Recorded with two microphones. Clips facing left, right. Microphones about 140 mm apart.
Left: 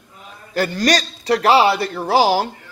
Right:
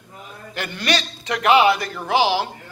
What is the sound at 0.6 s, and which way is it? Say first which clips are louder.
A man's voice: left 6 dB; 40° left (ahead or behind).